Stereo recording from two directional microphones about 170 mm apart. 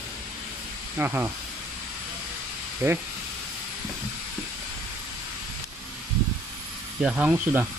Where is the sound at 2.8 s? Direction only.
15° right (ahead or behind).